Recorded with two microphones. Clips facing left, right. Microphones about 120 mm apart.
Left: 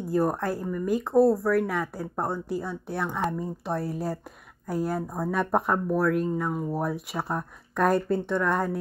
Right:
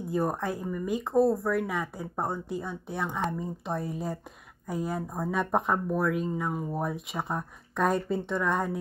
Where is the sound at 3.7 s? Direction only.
80° left.